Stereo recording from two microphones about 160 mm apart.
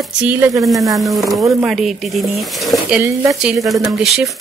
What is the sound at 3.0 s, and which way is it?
Speech, 20° right (ahead or behind).